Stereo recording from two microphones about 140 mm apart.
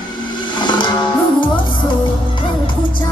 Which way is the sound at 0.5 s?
35° left (ahead or behind).